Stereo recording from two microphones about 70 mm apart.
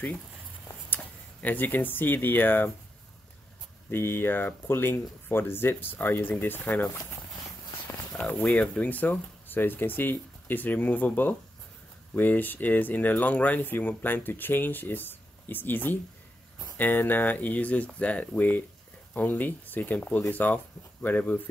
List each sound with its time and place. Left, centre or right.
0.8 s speech: left
3.9 s speech: left
8.4 s speech: centre
8.7 s speech: left